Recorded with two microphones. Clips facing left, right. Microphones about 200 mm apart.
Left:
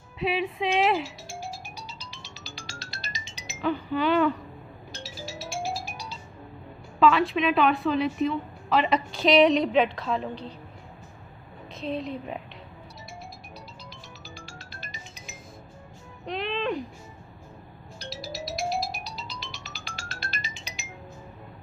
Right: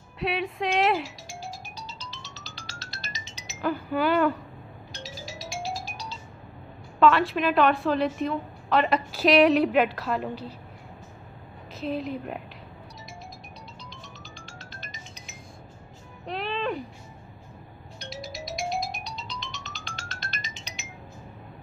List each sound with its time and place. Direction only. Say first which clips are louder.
0.2 s speech: left 1 dB; centre (ahead or behind)
1.8 s music: right 1 dB; 10° left (ahead or behind)
3.6 s a woman's voice: even; 5° right (ahead or behind)
5.7 s music: left 1 dB; 10° left (ahead or behind)
7.0 s a woman's voice: even; centre (ahead or behind)
11.7 s a woman's voice: right 1 dB; centre (ahead or behind)
16.3 s music: left 1 dB; centre (ahead or behind)
17.9 s music: even; 35° left (ahead or behind)
18.2 s music: left 2 dB; centre (ahead or behind)